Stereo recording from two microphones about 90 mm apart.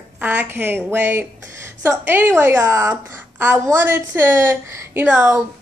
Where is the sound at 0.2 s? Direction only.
15° right (ahead or behind).